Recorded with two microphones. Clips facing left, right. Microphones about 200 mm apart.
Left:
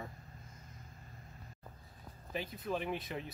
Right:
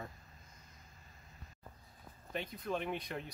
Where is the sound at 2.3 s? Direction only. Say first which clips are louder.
Left 1 dB; 5° left (ahead or behind).